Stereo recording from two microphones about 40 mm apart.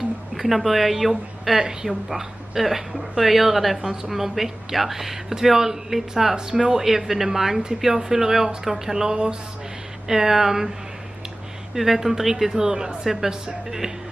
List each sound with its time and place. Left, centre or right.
0.4 s a woman's voice: centre
6.3 s speech: centre
6.8 s speech: centre
11.7 s speech: centre